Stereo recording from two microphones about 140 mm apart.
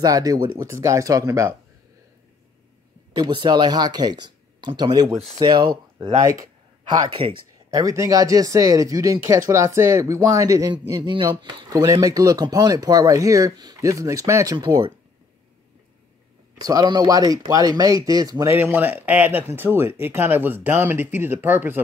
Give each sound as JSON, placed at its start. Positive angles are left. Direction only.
{"t": 0.0, "sound": "speech", "side_deg": -25}
{"t": 3.2, "sound": "speech", "side_deg": -35}
{"t": 6.9, "sound": "speech", "side_deg": -30}
{"t": 16.5, "sound": "speech", "side_deg": -30}